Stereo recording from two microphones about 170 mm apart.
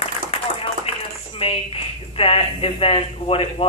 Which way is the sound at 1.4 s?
35° left (ahead or behind).